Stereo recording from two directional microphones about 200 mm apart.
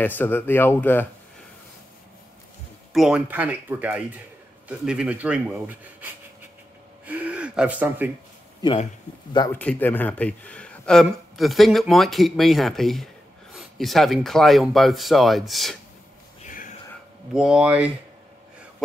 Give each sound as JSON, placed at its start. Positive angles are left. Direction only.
{"t": 0.0, "sound": "speech", "side_deg": 10}
{"t": 2.9, "sound": "speech", "side_deg": -5}
{"t": 9.5, "sound": "speech", "side_deg": 10}
{"t": 16.4, "sound": "whispering", "side_deg": 40}
{"t": 17.3, "sound": "speech", "side_deg": -5}